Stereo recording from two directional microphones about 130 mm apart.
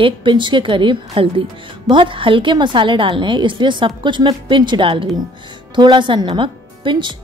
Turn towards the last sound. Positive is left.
turn(degrees=-40)  # may be behind; listen again after turning